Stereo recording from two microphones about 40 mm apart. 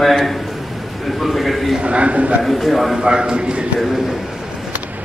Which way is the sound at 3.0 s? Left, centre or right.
Right.